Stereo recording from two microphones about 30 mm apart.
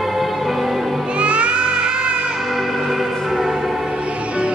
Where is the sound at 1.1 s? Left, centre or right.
Right.